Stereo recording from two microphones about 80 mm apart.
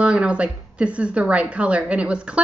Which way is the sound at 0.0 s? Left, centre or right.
Centre.